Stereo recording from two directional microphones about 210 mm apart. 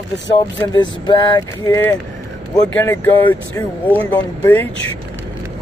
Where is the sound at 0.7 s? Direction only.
20° left (ahead or behind).